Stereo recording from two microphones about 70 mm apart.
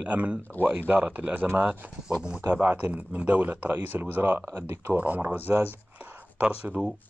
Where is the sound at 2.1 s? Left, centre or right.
Centre.